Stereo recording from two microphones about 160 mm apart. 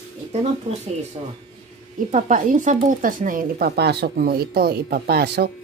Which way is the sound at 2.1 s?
55° right (ahead or behind).